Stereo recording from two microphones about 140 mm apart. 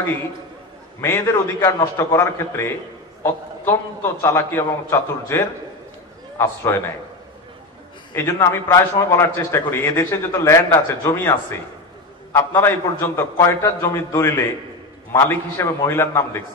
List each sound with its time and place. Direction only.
1.0 s a man's voice: 15° left (ahead or behind)
8.1 s a man's voice: 15° left (ahead or behind)